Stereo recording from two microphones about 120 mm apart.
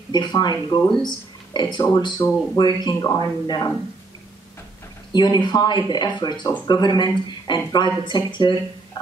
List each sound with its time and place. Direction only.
0.1 s speech: 35° left (ahead or behind)
5.1 s speech: 35° left (ahead or behind)